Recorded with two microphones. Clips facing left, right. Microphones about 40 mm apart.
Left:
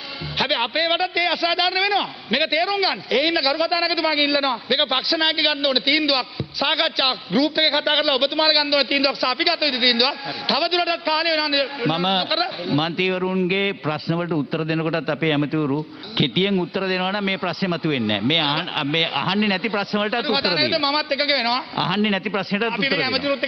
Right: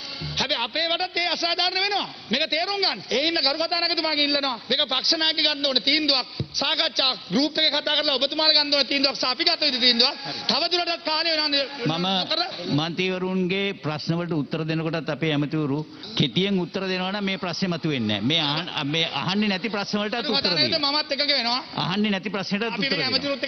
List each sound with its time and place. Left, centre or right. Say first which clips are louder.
0.4 s a man's voice: left 4 dB; centre
16.2 s a man's voice: left 3 dB; centre
22.0 s a man's voice: left 4 dB; centre